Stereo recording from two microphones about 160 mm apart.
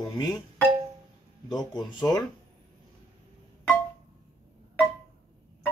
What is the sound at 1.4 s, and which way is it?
Speech, 25° left (ahead or behind).